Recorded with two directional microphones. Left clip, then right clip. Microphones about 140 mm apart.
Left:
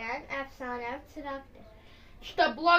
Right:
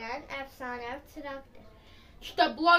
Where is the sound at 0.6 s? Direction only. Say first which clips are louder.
Left 1 dB; 5° left (ahead or behind).